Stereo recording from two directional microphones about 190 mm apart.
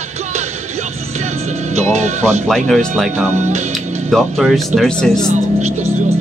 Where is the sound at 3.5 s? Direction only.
35° right (ahead or behind).